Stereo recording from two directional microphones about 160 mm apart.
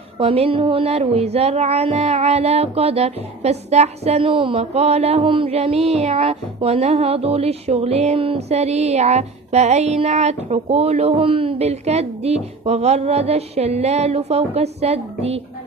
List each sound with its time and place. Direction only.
0.2 s child singing: 35° right (ahead or behind)